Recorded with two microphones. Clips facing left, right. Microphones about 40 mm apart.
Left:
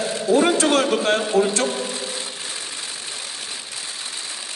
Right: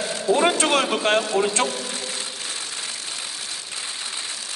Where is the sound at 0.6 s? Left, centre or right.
Right.